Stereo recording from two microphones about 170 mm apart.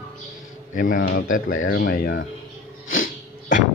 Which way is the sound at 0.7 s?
55° left (ahead or behind).